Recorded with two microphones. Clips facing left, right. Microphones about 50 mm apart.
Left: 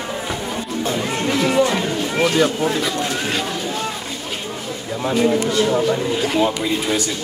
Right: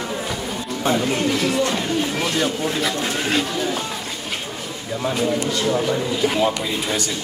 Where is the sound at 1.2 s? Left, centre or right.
Left.